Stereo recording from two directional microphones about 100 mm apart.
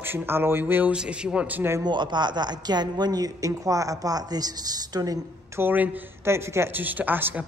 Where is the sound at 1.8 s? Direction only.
50° right (ahead or behind).